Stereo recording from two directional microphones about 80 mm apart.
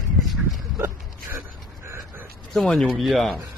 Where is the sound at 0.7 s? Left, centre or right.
Right.